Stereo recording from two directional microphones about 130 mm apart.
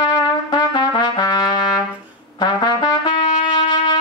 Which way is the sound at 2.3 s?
35° left (ahead or behind).